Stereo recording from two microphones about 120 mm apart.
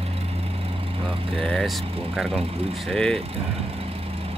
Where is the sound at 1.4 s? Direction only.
5° left (ahead or behind).